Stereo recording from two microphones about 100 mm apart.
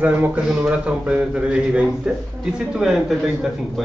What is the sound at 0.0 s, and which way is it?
A man's voice, 15° right (ahead or behind).